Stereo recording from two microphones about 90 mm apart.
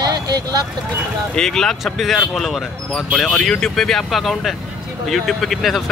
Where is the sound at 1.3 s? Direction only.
5° left (ahead or behind).